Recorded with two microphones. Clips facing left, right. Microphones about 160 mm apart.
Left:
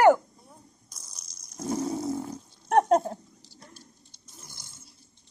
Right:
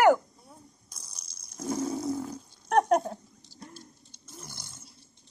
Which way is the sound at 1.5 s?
25° left (ahead or behind).